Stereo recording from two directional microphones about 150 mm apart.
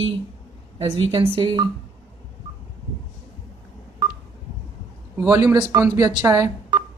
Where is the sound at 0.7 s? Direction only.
35° right (ahead or behind).